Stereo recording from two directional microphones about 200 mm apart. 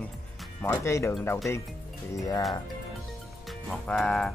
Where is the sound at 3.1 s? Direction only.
Centre (ahead or behind).